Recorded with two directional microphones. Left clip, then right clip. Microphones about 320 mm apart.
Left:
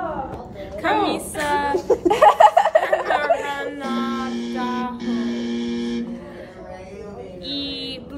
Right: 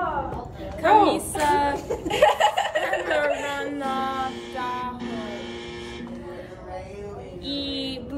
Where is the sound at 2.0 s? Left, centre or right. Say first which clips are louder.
Left 6 dB; centre.